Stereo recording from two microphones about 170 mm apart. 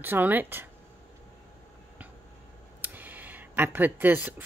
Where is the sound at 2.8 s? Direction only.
10° right (ahead or behind).